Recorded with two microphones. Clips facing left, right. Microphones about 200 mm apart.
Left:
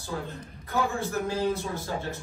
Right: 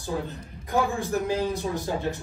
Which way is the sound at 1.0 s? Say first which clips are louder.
Right 2 dB; 15° right (ahead or behind).